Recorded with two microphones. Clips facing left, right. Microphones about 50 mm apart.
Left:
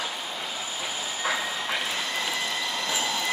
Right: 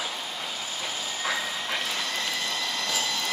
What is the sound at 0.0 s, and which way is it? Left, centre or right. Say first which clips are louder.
Train: left 1 dB; centre.